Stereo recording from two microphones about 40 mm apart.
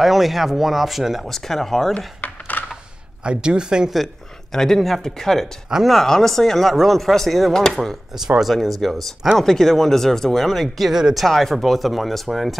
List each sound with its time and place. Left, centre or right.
0.0 s speech: centre
1.3 s speech: centre
2.2 s a sound: left
3.3 s speech: right
3.9 s speech: centre
10.9 s speech: centre
11.2 s speech: centre